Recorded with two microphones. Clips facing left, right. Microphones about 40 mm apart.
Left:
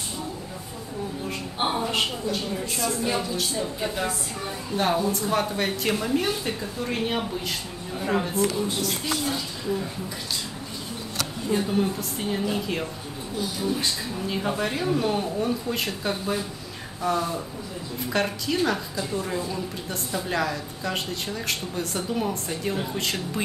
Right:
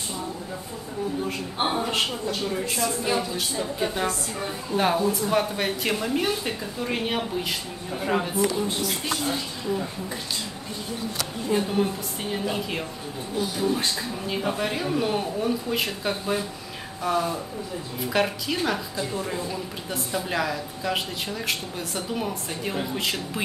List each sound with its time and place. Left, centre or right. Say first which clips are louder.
2.8 s speech: even; centre
4.7 s a woman's voice: right 1 dB; centre
11.1 s speech: even; centre
14.2 s a woman's voice: left 1 dB; centre